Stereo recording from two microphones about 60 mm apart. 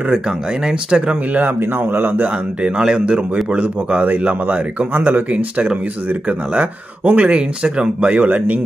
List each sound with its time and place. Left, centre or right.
0.7 s speech: centre
1.6 s speech: right
2.2 s speech: centre